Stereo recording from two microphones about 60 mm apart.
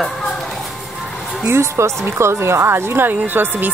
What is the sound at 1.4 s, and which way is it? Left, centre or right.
A woman's voice, right.